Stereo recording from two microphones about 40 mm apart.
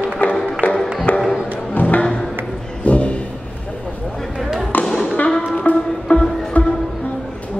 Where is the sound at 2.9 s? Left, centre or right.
Left.